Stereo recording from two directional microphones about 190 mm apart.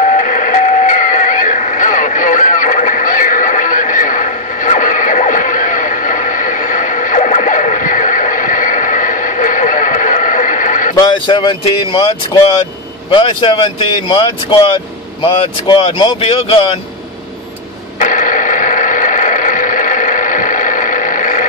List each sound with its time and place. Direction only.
0.0 s radio: 40° left (ahead or behind)
11.0 s speech: 25° left (ahead or behind)
17.9 s radio: 45° left (ahead or behind)